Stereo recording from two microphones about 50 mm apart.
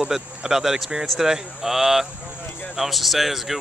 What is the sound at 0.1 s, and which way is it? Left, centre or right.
Speech, centre.